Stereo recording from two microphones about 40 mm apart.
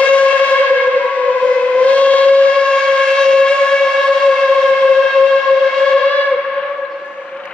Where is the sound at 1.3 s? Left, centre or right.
Left.